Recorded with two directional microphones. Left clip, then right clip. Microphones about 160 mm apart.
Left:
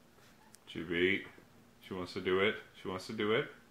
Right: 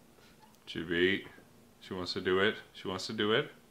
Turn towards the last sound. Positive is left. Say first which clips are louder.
# right 3 dB
turn(degrees=-10)  # may be behind; listen again after turning